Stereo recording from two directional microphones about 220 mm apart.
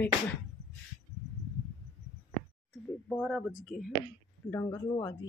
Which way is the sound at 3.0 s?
Centre (ahead or behind).